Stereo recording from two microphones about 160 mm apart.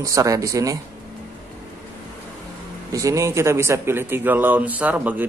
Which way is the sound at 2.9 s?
20° right (ahead or behind).